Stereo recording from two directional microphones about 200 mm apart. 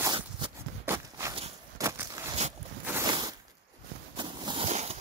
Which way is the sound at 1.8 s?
15° right (ahead or behind).